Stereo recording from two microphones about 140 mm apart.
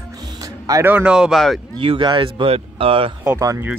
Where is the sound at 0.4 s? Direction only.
25° right (ahead or behind).